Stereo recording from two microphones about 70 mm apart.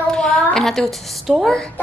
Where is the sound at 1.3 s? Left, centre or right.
Centre.